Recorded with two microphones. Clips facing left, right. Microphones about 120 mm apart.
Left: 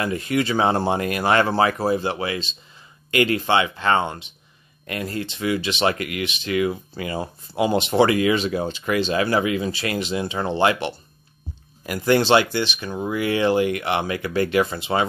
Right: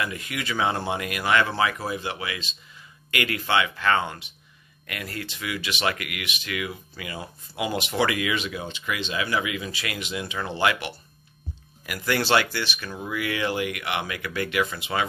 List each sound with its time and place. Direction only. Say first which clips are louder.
0.0 s speech: left 8 dB; 35° left (ahead or behind)